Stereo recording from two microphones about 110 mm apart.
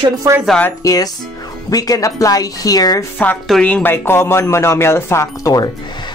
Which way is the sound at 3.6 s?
15° left (ahead or behind).